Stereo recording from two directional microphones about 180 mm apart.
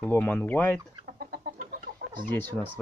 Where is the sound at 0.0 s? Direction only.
10° left (ahead or behind).